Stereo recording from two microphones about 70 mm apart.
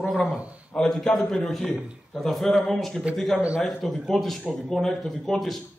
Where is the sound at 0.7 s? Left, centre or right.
Centre.